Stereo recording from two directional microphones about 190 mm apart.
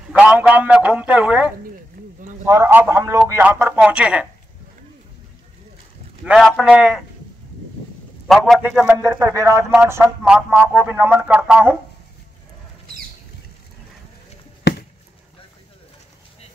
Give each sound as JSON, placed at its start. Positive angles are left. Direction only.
{"t": 0.2, "sound": "speech", "side_deg": -5}
{"t": 2.0, "sound": "a sound", "side_deg": -50}
{"t": 2.4, "sound": "speech", "side_deg": -15}
{"t": 6.2, "sound": "a man's voice", "side_deg": 0}
{"t": 8.3, "sound": "a man's voice", "side_deg": 0}
{"t": 8.9, "sound": "speech", "side_deg": -15}